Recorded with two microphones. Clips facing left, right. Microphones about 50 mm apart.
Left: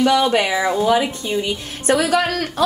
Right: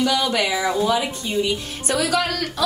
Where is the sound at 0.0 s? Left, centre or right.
Left.